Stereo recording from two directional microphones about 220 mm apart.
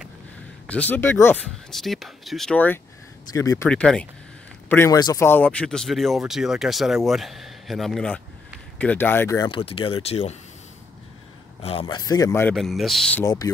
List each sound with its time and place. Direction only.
0.7 s speech: 5° left (ahead or behind); by 10.3 s 30° left (ahead or behind)
11.6 s speech: 25° left (ahead or behind)
12.5 s speech: centre (ahead or behind)
13.2 s speech: 15° left (ahead or behind)